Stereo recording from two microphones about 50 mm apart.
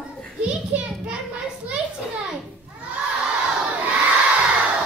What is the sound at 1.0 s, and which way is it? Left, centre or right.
Children playing, right.